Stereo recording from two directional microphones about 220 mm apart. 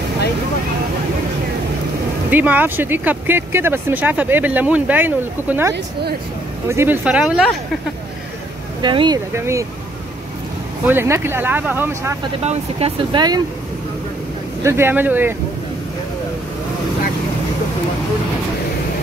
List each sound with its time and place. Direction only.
2.3 s speech: 10° right (ahead or behind)
8.8 s speech: 20° right (ahead or behind)
10.9 s speech: 10° right (ahead or behind)
12.4 s speech: 25° right (ahead or behind)
14.6 s speech: 10° right (ahead or behind)